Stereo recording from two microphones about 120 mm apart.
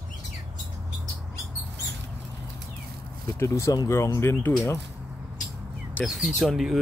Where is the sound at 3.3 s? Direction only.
25° left (ahead or behind).